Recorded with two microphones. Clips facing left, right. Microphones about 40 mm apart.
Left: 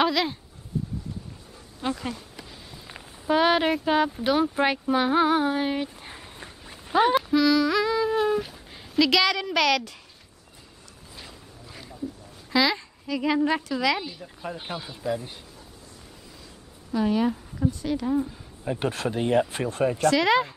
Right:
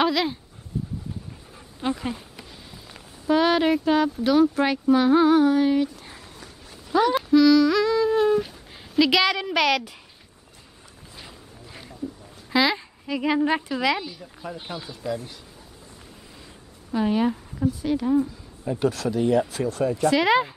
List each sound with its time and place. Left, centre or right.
0.0 s dog: centre
1.8 s speech: centre
2.9 s speech: centre; by 7.2 s left
7.2 s humming: centre
9.0 s speech: centre
11.1 s boat: centre
12.4 s speech: centre
13.9 s speech: centre
16.9 s speech: centre
18.7 s speech: left
20.0 s speech: centre